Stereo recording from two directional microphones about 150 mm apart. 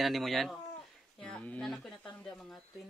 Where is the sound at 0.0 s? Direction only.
Centre (ahead or behind).